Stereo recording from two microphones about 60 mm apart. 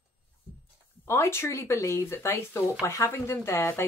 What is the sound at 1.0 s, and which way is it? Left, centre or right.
Speech, left.